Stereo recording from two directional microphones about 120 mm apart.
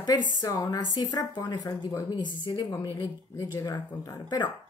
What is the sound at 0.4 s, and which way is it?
A woman's voice, 30° left (ahead or behind).